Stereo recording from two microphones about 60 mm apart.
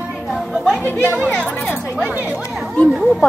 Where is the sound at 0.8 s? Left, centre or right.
Left.